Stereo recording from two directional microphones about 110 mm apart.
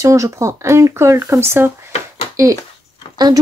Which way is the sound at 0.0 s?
30° right (ahead or behind).